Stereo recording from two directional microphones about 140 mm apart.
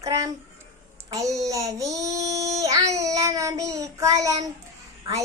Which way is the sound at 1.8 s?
25° right (ahead or behind).